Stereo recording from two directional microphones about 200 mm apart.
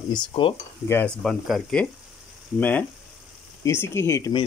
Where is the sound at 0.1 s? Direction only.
25° left (ahead or behind).